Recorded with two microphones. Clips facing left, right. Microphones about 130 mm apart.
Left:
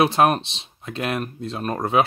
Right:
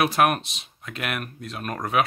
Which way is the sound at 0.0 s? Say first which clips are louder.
Left 3 dB; 25° left (ahead or behind).